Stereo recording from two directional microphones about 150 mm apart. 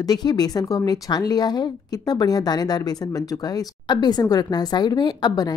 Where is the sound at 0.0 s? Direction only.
25° left (ahead or behind).